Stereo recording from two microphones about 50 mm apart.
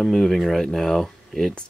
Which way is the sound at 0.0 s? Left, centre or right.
Centre.